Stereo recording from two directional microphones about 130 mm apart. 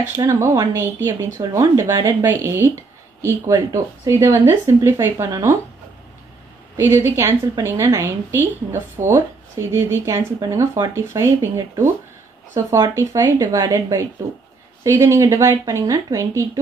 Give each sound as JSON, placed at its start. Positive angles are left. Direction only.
{"t": 0.2, "sound": "speech", "side_deg": -20}
{"t": 6.8, "sound": "speech", "side_deg": -20}